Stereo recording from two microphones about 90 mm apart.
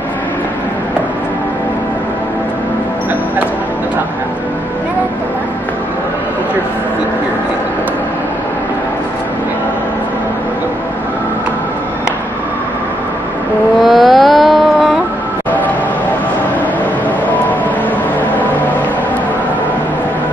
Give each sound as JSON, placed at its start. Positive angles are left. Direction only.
{"t": 13.7, "sound": "carnatic music", "side_deg": 0}
{"t": 15.5, "sound": "music", "side_deg": 20}